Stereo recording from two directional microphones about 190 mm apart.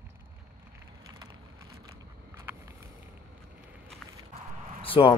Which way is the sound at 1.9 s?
15° right (ahead or behind).